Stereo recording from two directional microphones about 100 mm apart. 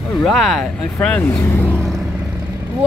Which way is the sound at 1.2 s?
30° left (ahead or behind).